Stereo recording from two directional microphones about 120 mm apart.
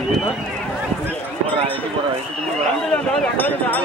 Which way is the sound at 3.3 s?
15° left (ahead or behind).